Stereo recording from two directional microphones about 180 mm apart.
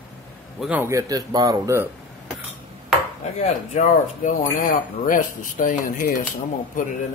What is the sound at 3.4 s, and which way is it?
Speech, 45° left (ahead or behind).